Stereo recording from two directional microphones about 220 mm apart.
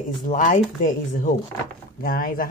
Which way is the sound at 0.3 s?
35° left (ahead or behind).